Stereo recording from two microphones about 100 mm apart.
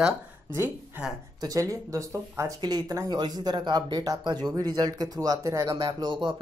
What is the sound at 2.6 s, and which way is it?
Speech, 40° right (ahead or behind).